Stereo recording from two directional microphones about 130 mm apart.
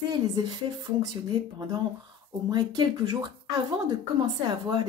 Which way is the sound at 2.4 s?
35° right (ahead or behind).